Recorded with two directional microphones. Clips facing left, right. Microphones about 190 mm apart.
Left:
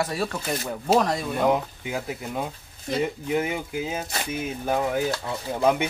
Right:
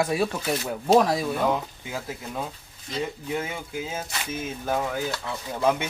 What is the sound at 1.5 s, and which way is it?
Speech, 15° left (ahead or behind).